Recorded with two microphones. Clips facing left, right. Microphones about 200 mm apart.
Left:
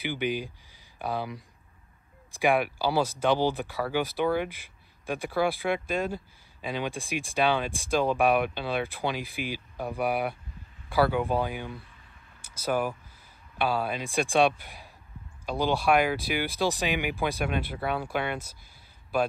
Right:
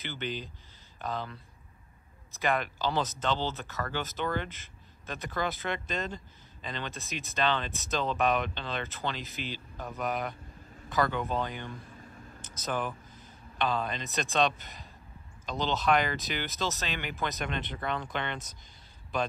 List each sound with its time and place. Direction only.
0.0 s speech: 10° left (ahead or behind)
11.8 s a sound: 45° right (ahead or behind)
12.6 s speech: 10° left (ahead or behind)